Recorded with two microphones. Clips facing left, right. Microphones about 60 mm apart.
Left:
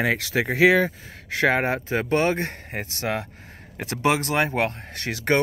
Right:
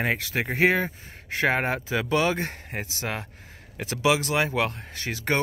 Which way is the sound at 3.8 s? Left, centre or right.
Left.